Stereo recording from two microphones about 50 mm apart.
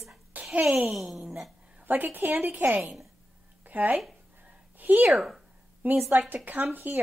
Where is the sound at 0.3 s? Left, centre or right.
Right.